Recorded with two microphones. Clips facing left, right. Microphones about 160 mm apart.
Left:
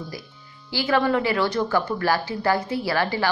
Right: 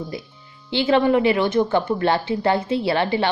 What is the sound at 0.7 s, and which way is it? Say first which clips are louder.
Speech: right 4 dB; 25° right (ahead or behind).